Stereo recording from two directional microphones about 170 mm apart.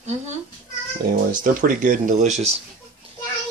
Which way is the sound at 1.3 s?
55° right (ahead or behind).